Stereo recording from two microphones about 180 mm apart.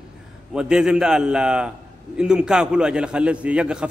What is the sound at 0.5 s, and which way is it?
A man's voice, 5° right (ahead or behind).